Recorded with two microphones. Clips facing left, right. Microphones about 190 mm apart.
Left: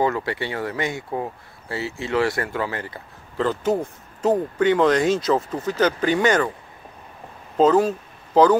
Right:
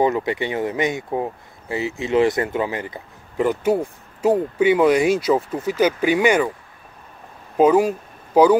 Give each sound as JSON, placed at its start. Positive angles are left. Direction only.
{"t": 0.0, "sound": "speech", "side_deg": -20}
{"t": 7.5, "sound": "speech", "side_deg": -10}